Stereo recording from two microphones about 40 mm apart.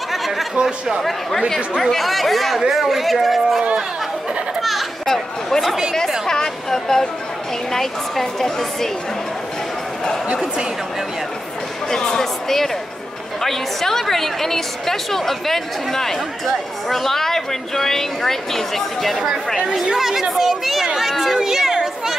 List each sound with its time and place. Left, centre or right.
0.1 s a sound: centre
0.6 s a man's voice: centre
1.8 s speech: centre
4.6 s children playing: centre
6.2 s a woman's voice: centre
11.9 s a woman's voice: centre
19.2 s speech: centre
21.1 s speech: centre
21.4 s a sound: centre